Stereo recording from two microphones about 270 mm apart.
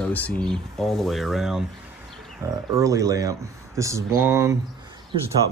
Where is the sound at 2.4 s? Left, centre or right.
Centre.